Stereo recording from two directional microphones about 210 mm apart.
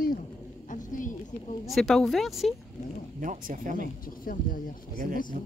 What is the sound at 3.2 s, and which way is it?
Speech, 40° right (ahead or behind).